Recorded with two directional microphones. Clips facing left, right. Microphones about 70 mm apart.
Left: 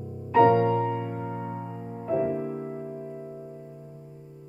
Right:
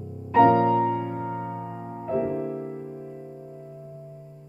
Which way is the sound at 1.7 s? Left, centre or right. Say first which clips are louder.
Right 2 dB; centre.